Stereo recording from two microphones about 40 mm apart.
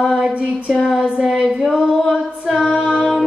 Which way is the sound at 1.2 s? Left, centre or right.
Centre.